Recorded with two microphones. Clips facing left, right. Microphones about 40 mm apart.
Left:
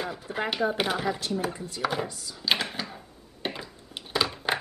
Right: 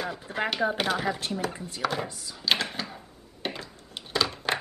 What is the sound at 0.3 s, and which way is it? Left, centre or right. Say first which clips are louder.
Chopping: even; centre.